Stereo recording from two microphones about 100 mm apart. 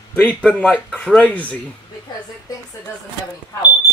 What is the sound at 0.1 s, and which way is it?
Speech, 15° left (ahead or behind).